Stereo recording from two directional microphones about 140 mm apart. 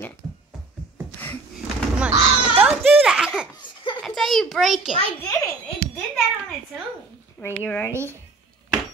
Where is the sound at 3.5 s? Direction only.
35° left (ahead or behind).